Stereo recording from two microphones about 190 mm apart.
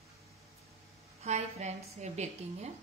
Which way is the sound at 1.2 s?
35° right (ahead or behind).